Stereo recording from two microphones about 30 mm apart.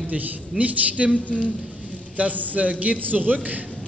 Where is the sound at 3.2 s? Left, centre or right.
Right.